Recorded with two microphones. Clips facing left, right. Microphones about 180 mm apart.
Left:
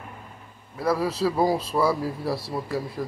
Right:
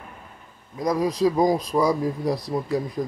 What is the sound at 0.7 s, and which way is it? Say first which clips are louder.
Speech: right 2 dB; 15° right (ahead or behind).